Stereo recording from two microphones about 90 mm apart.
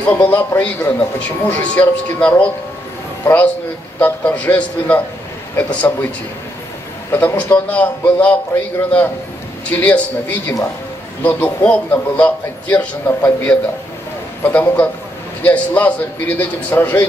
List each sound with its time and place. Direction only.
0.0 s a man's voice: 20° left (ahead or behind)
7.1 s a man's voice: 20° left (ahead or behind)
14.4 s a man's voice: 20° left (ahead or behind)